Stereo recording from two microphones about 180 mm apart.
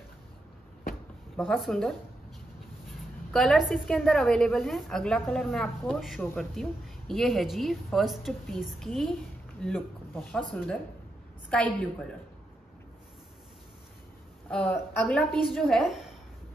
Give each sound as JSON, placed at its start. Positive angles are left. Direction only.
{"t": 1.3, "sound": "a woman's voice", "side_deg": 0}
{"t": 3.3, "sound": "a woman's voice", "side_deg": 0}
{"t": 14.5, "sound": "a woman's voice", "side_deg": 5}